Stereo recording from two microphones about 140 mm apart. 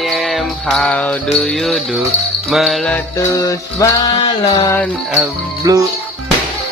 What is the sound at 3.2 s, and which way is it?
Music, 20° left (ahead or behind).